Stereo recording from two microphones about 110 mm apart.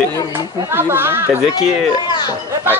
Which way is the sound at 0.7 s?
20° right (ahead or behind).